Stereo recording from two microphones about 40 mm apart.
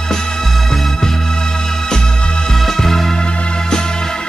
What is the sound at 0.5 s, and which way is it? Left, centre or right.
Music, centre.